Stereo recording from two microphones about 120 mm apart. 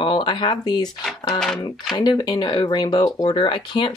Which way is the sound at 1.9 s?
35° left (ahead or behind).